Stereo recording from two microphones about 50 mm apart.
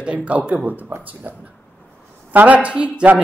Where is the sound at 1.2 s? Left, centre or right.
Right.